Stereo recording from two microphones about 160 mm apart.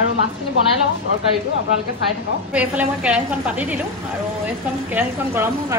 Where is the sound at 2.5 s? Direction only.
10° right (ahead or behind).